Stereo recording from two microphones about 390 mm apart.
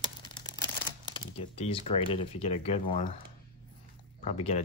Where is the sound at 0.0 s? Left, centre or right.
Centre.